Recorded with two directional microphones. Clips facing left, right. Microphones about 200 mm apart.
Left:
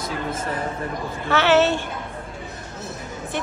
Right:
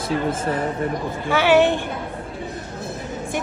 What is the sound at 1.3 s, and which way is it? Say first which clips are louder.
Speech: right 2 dB; 10° right (ahead or behind).